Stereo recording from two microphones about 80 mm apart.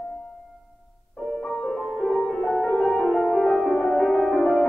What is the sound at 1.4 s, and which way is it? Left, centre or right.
Music, centre.